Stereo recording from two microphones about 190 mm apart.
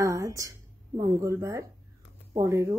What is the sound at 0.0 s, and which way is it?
A woman's voice, 15° right (ahead or behind).